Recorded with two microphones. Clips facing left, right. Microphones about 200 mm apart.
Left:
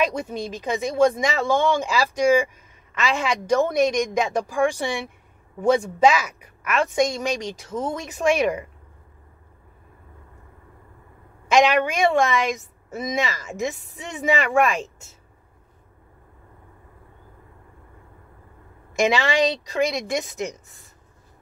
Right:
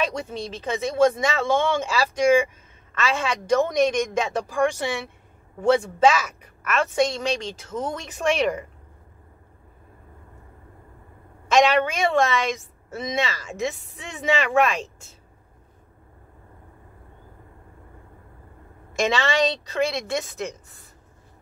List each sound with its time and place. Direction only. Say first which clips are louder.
0.0 s speech: left 3 dB; 10° left (ahead or behind)
11.5 s speech: left 1 dB; 15° left (ahead or behind)
18.9 s speech: left 2 dB; 15° left (ahead or behind)